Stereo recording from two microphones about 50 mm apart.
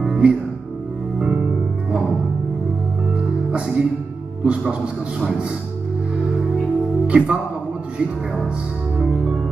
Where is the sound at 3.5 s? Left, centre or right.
Centre.